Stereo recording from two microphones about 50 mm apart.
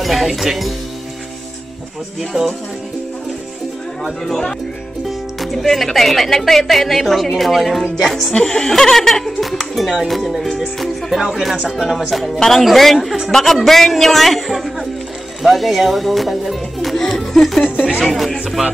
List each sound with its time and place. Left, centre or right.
0.0 s a woman's voice: centre
2.3 s music: centre
4.0 s a woman's voice: centre
8.3 s a woman's voice: centre
12.4 s a woman's voice: centre
16.9 s music: centre
18.0 s a woman's voice: centre